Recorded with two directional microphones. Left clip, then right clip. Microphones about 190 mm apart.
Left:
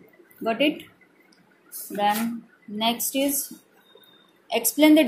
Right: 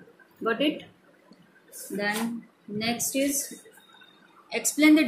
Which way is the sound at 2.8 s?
20° left (ahead or behind).